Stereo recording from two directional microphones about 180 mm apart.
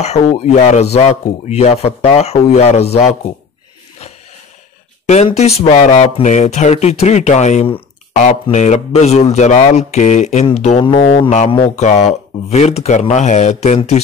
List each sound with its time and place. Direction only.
0.0 s speech: 40° left (ahead or behind)
5.0 s speech: 35° left (ahead or behind)